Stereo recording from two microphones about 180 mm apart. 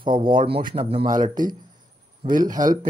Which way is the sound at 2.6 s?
45° right (ahead or behind).